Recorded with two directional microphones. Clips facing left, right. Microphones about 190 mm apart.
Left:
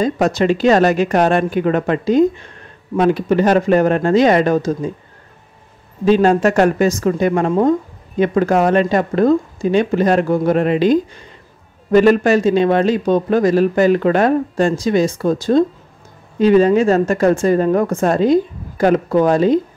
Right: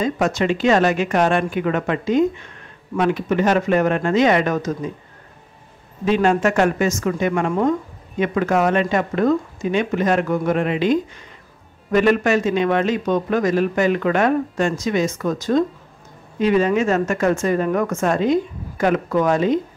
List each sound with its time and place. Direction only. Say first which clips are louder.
0.0 s a man's voice: left 4 dB; 35° left (ahead or behind)
6.0 s a man's voice: left 5 dB; 35° left (ahead or behind)